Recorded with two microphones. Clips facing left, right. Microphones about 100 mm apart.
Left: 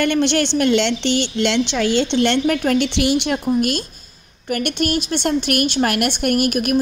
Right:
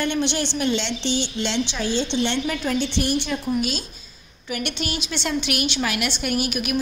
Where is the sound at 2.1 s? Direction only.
60° left (ahead or behind); by 3.3 s 85° left.